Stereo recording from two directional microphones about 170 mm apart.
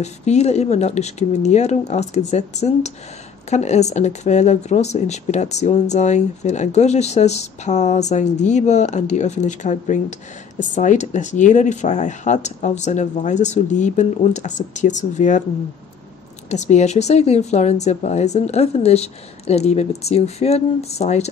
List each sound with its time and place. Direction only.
0.0 s speech: 40° left (ahead or behind)
16.4 s speech: 40° left (ahead or behind)